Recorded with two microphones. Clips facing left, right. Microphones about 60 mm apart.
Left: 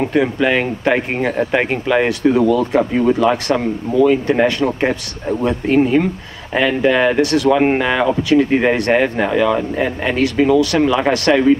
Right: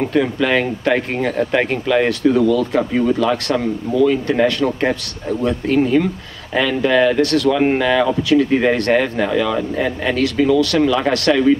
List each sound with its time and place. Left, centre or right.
0.0 s speech: centre
2.2 s speech: left
7.2 s speech: centre
7.4 s speech: left
8.5 s speech: centre